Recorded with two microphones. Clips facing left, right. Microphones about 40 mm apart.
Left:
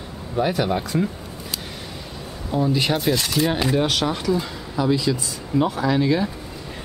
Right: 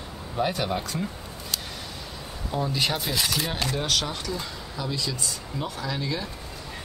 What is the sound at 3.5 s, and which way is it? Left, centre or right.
Speech, centre.